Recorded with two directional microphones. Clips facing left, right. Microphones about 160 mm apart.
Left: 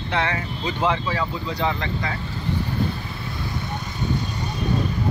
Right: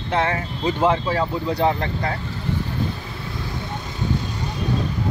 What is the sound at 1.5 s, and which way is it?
Speech, 50° right (ahead or behind).